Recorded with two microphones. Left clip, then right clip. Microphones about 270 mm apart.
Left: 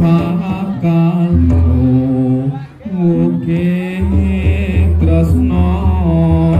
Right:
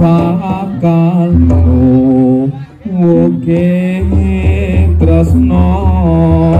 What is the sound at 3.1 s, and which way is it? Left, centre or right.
Mantra, centre.